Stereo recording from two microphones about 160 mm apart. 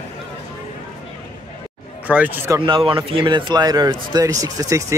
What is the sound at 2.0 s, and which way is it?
Speech, 10° right (ahead or behind).